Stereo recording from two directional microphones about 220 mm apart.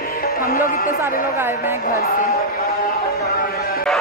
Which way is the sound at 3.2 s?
45° left (ahead or behind).